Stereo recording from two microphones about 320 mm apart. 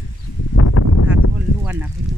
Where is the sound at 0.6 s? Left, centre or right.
Left.